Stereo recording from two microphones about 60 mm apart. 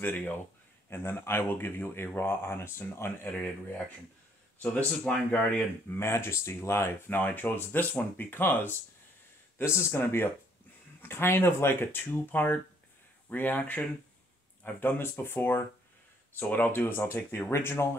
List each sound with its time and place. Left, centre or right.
0.0 s speech: left
3.3 s speech: left
5.9 s speech: left
7.2 s speech: left
9.6 s speech: left
14.9 s speech: left